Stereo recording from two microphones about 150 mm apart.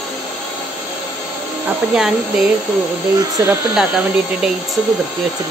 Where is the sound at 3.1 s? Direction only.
20° right (ahead or behind).